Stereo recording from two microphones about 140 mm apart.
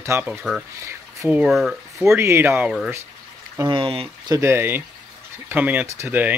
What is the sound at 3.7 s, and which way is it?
Speech, 40° right (ahead or behind).